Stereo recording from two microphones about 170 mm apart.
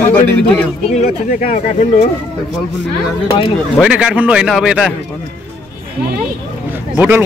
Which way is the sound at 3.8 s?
5° right (ahead or behind).